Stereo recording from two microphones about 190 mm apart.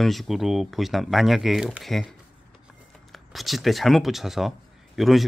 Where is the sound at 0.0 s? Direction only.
Centre (ahead or behind).